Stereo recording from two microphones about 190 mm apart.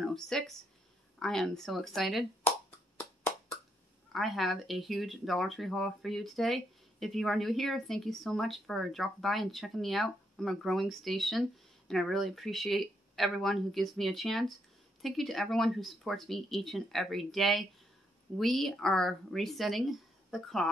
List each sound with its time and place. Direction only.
0.0 s speech: 5° left (ahead or behind)
4.1 s speech: centre (ahead or behind)